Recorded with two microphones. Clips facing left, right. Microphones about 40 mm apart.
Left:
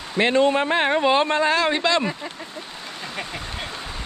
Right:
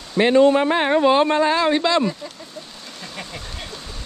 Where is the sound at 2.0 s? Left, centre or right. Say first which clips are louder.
Right 2 dB; left.